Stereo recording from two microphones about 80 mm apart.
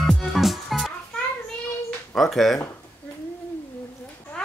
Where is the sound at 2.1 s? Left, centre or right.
Centre.